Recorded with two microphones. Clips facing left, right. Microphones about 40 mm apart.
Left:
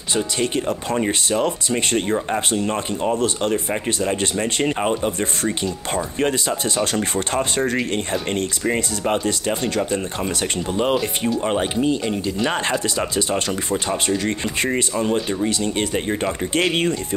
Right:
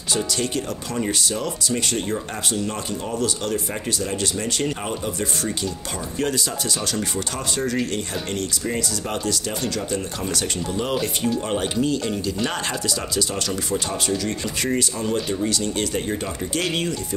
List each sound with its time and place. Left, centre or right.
0.1 s speech: left